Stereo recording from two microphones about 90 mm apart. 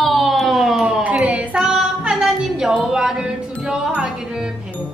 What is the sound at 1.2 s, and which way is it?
Female singing, 15° right (ahead or behind).